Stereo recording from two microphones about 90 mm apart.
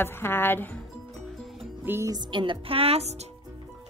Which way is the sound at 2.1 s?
65° right (ahead or behind).